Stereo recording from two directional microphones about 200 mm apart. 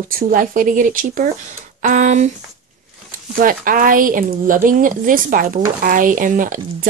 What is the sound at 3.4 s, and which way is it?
A woman's voice, 45° right (ahead or behind).